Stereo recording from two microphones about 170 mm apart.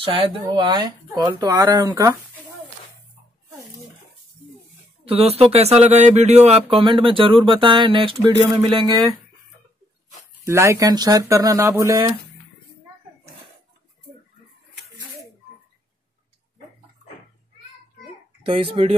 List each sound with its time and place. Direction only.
0.0 s speech: 30° right (ahead or behind)
5.0 s speech: 35° right (ahead or behind)
10.4 s speech: 15° right (ahead or behind)
18.4 s speech: 30° right (ahead or behind)